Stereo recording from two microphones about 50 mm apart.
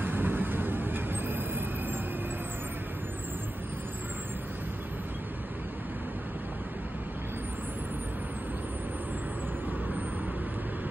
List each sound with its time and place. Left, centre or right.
0.0 s vehicle: right